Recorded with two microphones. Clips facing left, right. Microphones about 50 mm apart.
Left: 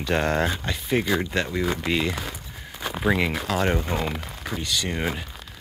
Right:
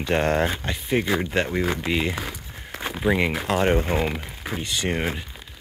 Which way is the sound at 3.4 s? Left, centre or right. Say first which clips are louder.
Right 3 dB; right.